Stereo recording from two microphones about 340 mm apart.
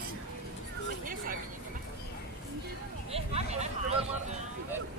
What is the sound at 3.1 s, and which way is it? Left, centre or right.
Vehicle, centre.